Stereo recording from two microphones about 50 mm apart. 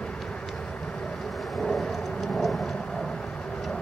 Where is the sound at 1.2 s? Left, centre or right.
Centre.